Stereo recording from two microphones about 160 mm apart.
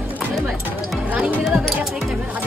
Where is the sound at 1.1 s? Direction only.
5° right (ahead or behind).